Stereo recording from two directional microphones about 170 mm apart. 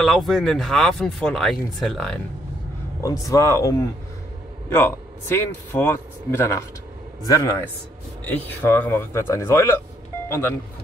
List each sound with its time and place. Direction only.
0.0 s speech: centre (ahead or behind)
3.0 s a man's voice: 20° left (ahead or behind)